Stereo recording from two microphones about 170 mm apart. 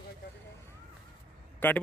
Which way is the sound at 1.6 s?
10° left (ahead or behind).